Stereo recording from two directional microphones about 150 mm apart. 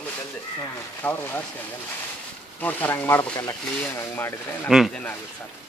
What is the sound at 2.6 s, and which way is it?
Speech, 10° left (ahead or behind).